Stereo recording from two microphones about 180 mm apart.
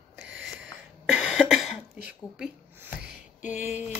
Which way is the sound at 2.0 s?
5° right (ahead or behind).